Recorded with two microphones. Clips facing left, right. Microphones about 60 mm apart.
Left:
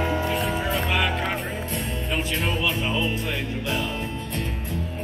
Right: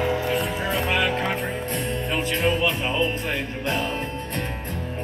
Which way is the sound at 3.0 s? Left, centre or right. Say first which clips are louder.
Right 2 dB; right.